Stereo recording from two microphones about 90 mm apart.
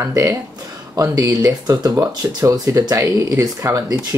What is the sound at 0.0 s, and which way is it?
Speech, 35° right (ahead or behind).